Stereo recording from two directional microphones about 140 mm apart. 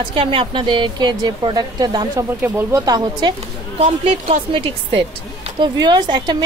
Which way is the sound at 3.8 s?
50° right (ahead or behind).